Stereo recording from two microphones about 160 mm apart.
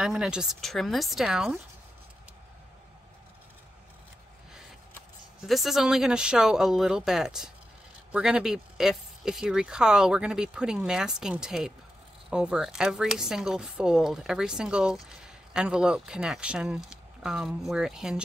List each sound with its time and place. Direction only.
0.0 s a woman's voice: 5° right (ahead or behind)
5.4 s a woman's voice: centre (ahead or behind)